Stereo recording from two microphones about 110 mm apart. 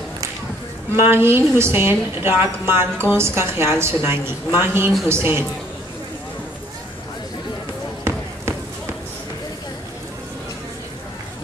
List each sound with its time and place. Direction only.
0.9 s a woman's voice: 25° right (ahead or behind)